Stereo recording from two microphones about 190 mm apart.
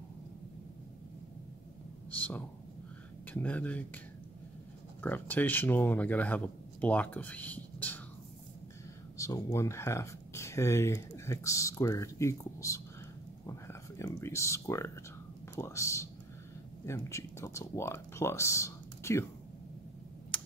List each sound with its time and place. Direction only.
2.0 s speech: 10° left (ahead or behind)
5.0 s speech: 10° left (ahead or behind)
9.2 s speech: 15° left (ahead or behind)
20.3 s computer keyboard: 5° left (ahead or behind)